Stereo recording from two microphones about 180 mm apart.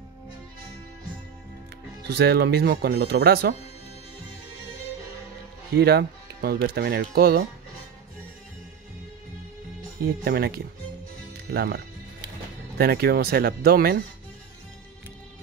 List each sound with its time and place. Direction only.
2.0 s speech: 65° right (ahead or behind)
5.7 s speech: 60° right (ahead or behind)
10.2 s speech: 60° right (ahead or behind)